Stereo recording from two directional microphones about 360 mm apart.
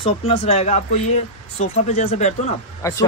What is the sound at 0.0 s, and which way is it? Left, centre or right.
Speech, centre.